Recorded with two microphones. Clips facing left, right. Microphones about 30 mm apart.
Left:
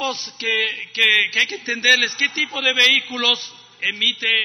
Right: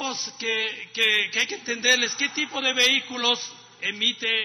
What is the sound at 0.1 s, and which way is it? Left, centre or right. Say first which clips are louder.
A man's voice: left 5 dB; left.